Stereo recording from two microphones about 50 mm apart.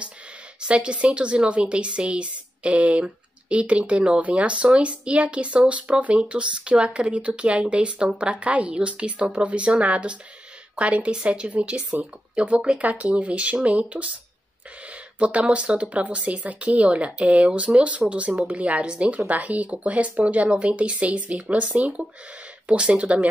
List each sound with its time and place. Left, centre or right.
0.6 s speech: right
15.1 s speech: right